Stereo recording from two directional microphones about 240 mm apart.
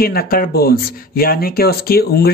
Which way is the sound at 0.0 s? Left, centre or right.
Left.